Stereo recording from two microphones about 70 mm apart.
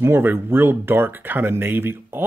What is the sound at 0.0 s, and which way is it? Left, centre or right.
Speech, right.